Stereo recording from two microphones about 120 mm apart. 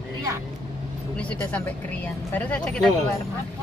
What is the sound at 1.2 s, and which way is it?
Speech, 10° left (ahead or behind).